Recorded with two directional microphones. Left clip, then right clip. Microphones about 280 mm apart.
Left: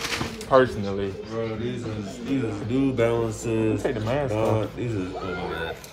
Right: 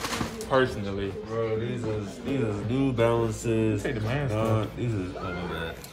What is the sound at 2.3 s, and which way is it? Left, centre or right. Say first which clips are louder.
A man's voice: left 2 dB; right.